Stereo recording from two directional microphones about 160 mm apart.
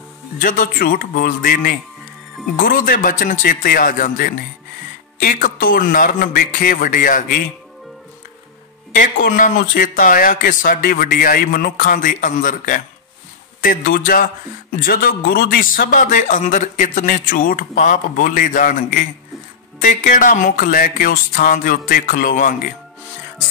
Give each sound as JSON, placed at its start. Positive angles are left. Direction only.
{"t": 0.4, "sound": "a man's voice", "side_deg": 55}
{"t": 8.9, "sound": "a man's voice", "side_deg": 60}